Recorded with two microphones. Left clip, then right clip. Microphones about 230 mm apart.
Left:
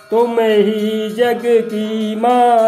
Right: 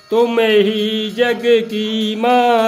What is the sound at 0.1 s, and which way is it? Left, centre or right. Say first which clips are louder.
Mantra: even; right.